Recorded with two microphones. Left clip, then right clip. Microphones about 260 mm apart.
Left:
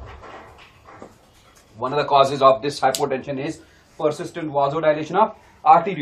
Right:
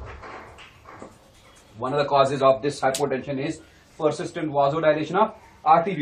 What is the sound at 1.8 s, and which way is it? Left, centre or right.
Speech, left.